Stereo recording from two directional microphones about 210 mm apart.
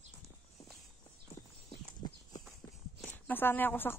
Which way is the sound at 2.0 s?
20° left (ahead or behind).